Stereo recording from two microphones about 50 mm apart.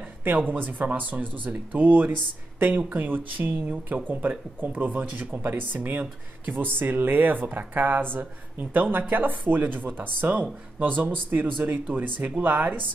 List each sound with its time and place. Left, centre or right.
0.2 s speech: right